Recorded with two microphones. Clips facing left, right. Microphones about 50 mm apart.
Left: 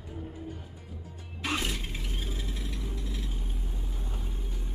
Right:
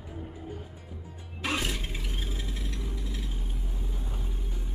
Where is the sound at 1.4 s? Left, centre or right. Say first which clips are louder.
Right 1 dB; centre.